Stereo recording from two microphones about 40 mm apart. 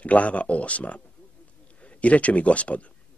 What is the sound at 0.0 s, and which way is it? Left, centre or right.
Speech, left.